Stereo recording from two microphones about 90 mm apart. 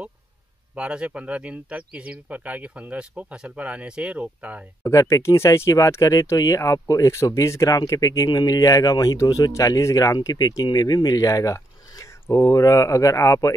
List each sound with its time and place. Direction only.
0.7 s speech: 10° right (ahead or behind)
4.8 s speech: 35° left (ahead or behind)